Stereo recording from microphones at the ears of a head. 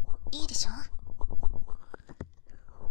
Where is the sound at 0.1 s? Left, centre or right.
Left.